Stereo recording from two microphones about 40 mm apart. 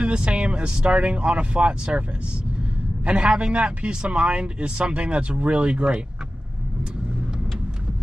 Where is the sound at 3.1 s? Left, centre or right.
Right.